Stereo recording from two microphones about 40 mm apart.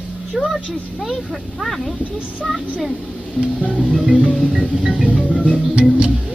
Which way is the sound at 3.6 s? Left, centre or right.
Left.